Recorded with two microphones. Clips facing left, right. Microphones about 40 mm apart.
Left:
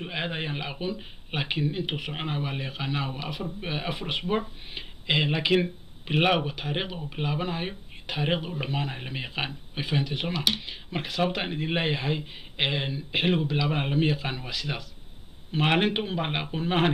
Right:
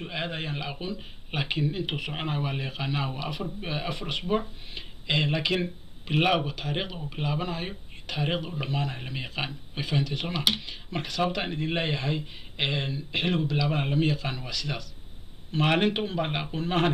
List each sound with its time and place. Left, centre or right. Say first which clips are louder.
0.0 s speech: left 1 dB; centre